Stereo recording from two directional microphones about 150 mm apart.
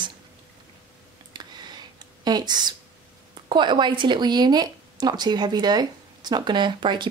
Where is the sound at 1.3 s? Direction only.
30° right (ahead or behind).